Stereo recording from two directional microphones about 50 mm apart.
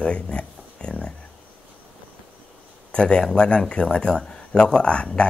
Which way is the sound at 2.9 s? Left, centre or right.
Centre.